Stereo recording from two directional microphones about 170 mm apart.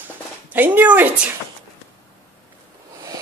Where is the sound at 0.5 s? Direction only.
10° right (ahead or behind).